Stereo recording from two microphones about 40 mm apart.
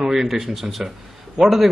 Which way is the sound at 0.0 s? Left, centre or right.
Centre.